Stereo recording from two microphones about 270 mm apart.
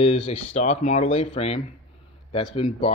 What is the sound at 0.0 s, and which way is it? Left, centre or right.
Speech, left.